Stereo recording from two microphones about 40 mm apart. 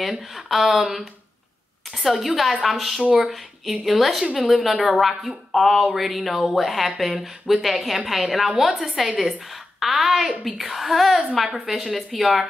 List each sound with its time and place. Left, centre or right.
0.0 s a woman's voice: centre
3.0 s speech: right
3.8 s a woman's voice: centre